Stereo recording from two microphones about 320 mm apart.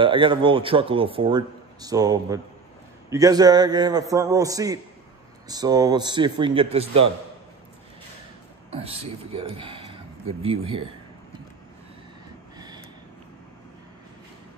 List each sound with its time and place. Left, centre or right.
0.0 s a man's voice: centre
8.7 s a man's voice: centre
12.5 s a sound: centre